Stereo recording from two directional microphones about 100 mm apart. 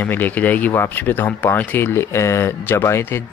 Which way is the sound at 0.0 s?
20° left (ahead or behind).